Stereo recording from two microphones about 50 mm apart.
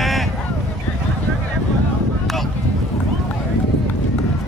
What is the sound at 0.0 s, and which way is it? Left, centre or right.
Vehicle, centre.